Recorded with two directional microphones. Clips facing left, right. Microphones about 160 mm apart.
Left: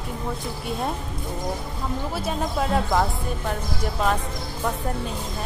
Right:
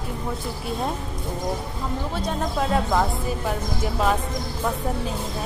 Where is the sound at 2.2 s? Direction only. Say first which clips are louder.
Even; centre (ahead or behind).